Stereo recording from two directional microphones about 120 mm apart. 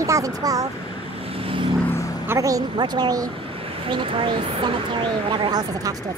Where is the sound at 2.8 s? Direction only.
35° right (ahead or behind).